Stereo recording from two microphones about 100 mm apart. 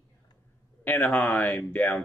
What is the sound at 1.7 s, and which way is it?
Speech, 20° left (ahead or behind).